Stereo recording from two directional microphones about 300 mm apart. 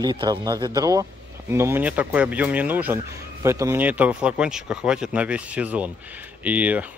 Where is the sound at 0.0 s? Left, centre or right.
Centre.